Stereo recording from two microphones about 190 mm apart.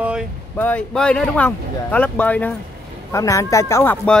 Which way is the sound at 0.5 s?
5° left (ahead or behind).